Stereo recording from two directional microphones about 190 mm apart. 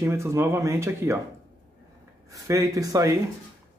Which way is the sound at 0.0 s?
15° right (ahead or behind).